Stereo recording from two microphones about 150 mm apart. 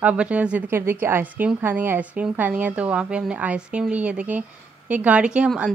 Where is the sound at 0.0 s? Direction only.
10° right (ahead or behind).